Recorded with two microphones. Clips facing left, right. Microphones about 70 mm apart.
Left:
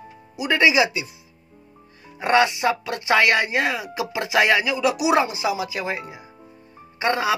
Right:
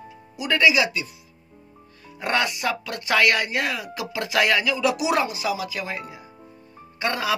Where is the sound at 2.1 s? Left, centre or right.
Centre.